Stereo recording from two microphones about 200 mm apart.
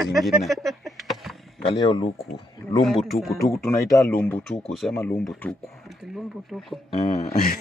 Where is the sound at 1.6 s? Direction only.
20° left (ahead or behind).